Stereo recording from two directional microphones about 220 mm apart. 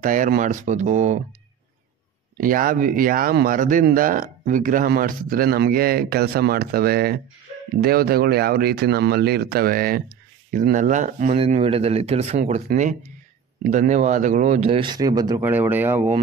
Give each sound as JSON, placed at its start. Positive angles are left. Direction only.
{"t": 0.0, "sound": "speech", "side_deg": -35}
{"t": 2.3, "sound": "speech", "side_deg": -40}